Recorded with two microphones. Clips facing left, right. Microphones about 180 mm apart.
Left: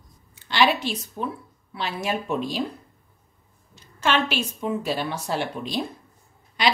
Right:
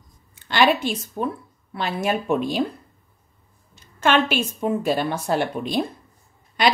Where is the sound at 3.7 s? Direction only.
50° right (ahead or behind).